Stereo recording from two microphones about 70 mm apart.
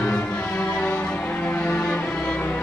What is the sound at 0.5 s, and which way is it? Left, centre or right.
Music, centre.